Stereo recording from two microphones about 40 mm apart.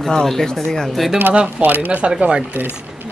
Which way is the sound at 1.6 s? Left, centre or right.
Right.